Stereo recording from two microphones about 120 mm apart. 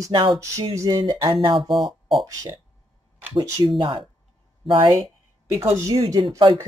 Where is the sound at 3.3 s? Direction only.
40° right (ahead or behind).